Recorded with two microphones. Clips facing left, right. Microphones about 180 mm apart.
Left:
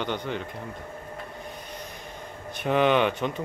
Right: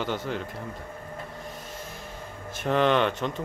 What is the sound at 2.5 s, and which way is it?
Speech, 5° left (ahead or behind).